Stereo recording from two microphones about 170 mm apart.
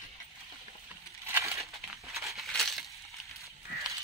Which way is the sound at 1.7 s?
Centre (ahead or behind).